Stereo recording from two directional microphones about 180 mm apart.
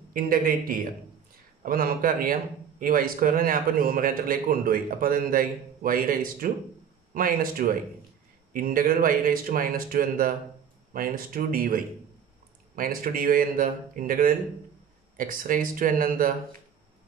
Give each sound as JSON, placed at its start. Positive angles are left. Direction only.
{"t": 0.1, "sound": "a man's voice", "side_deg": -50}